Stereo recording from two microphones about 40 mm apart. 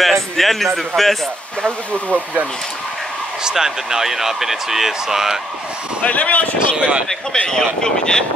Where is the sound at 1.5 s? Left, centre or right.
Left.